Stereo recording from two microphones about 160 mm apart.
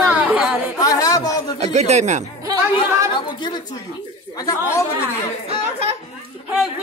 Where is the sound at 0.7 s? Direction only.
20° left (ahead or behind).